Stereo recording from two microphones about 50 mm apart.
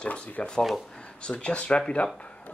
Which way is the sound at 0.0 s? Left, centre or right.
Centre.